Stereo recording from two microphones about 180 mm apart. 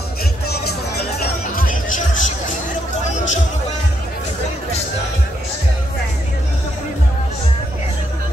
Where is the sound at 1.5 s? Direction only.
50° left (ahead or behind).